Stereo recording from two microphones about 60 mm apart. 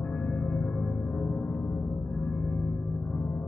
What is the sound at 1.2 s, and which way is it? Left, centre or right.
Gong, centre.